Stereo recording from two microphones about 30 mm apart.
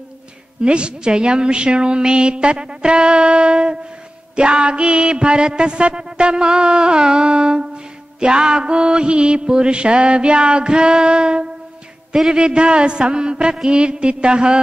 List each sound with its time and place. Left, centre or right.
0.6 s music: right